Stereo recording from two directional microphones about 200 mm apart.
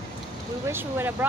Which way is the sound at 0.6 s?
10° right (ahead or behind).